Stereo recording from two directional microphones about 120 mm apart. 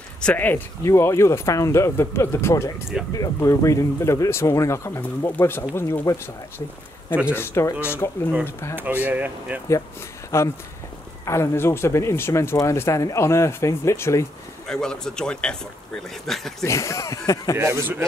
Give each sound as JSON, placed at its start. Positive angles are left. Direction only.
{"t": 0.2, "sound": "speech", "side_deg": 10}
{"t": 7.3, "sound": "speech", "side_deg": 20}
{"t": 8.7, "sound": "speech", "side_deg": -15}
{"t": 10.3, "sound": "speech", "side_deg": 20}
{"t": 14.7, "sound": "speech", "side_deg": 5}
{"t": 16.6, "sound": "speech", "side_deg": 25}
{"t": 17.6, "sound": "a man's voice", "side_deg": -20}